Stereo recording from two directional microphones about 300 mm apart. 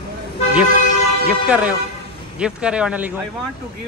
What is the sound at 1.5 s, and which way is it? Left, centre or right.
A man's voice, centre.